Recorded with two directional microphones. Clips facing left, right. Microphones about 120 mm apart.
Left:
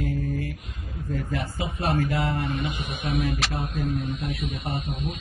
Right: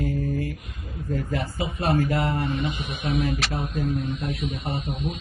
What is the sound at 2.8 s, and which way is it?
Speech, 45° left (ahead or behind).